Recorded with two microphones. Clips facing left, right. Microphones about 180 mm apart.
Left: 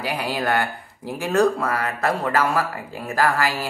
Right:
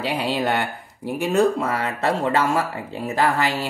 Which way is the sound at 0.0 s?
25° right (ahead or behind).